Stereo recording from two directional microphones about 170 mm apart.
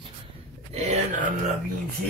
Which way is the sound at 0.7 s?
40° right (ahead or behind).